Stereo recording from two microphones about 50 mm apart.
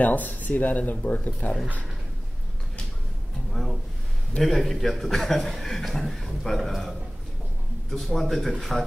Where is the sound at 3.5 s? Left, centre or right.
Centre.